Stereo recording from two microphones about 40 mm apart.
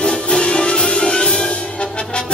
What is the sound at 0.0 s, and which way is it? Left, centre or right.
Music, left.